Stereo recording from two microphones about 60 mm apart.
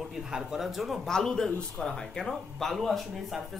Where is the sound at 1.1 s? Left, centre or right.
Centre.